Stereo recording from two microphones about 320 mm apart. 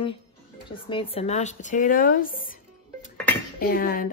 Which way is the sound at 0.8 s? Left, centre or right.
Centre.